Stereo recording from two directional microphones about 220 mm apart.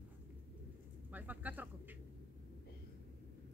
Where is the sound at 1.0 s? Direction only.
10° right (ahead or behind).